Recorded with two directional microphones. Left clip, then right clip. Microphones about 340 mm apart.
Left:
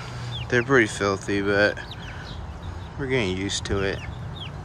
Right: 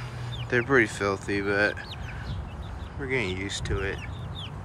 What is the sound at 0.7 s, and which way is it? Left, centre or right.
Speech, centre.